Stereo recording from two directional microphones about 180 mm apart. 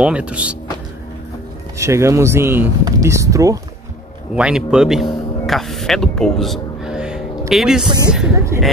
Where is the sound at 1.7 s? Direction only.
15° right (ahead or behind).